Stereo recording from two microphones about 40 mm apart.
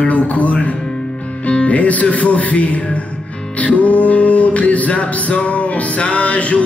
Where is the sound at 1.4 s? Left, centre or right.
Left.